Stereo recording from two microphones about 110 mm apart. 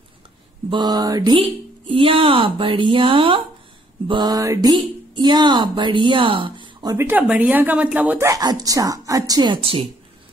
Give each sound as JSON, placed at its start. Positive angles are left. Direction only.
{"t": 0.7, "sound": "speech", "side_deg": -40}
{"t": 1.3, "sound": "speech", "side_deg": -55}
{"t": 4.1, "sound": "speech", "side_deg": -35}
{"t": 7.0, "sound": "speech", "side_deg": -15}
{"t": 8.2, "sound": "speech", "side_deg": -30}